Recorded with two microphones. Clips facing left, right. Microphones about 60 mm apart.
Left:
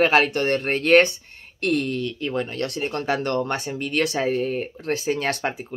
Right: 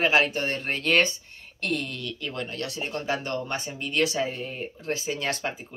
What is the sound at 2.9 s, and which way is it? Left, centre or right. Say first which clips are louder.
Speech: left 5 dB; left.